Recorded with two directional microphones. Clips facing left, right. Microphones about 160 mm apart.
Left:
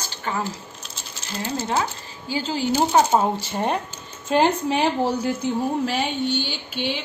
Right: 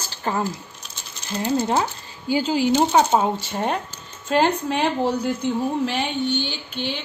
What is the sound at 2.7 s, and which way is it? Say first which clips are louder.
A woman's voice: even; 5° left (ahead or behind).